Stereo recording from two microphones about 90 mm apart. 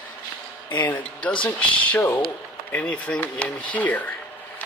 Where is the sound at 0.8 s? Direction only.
15° left (ahead or behind).